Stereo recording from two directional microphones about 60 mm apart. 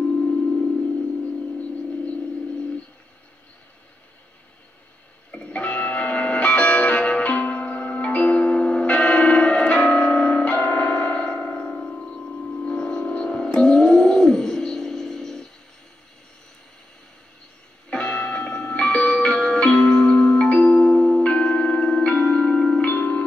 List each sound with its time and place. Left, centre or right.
0.3 s singing bowl: centre
1.6 s a sound: left
5.3 s music: left
12.6 s a sound: centre
17.8 s music: centre
21.2 s music: centre
22.8 s music: left